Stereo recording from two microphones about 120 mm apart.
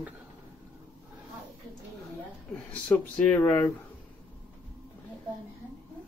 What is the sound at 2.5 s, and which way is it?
Speech, 10° left (ahead or behind).